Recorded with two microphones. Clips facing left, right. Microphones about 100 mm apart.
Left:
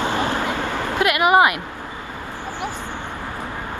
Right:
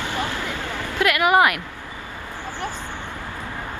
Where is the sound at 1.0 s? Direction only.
20° left (ahead or behind).